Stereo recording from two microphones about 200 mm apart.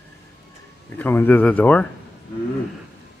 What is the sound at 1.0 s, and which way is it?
Speech, 10° left (ahead or behind).